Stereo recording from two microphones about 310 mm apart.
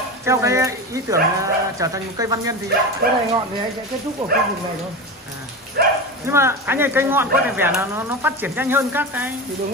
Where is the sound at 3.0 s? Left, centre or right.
Right.